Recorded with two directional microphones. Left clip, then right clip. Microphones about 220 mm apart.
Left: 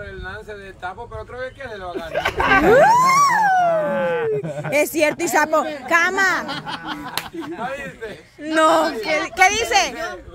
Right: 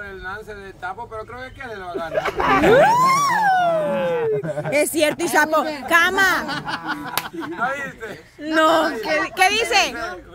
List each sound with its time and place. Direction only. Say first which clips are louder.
2.1 s speech: left 2 dB; 35° left (ahead or behind)
2.7 s speech: left 1 dB; 5° left (ahead or behind)
3.6 s speech: left 1 dB; 15° right (ahead or behind)
4.3 s speech: even; centre (ahead or behind)
8.5 s speech: left 1 dB; centre (ahead or behind)